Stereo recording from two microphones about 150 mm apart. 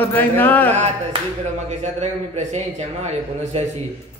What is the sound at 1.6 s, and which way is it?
A man's voice, 50° right (ahead or behind).